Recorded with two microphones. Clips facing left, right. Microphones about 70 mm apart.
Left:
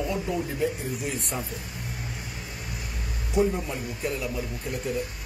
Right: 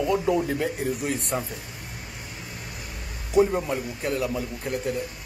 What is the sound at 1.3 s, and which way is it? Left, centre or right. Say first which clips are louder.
Speech: right 4 dB; right.